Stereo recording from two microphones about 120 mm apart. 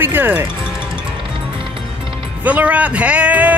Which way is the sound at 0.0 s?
15° right (ahead or behind).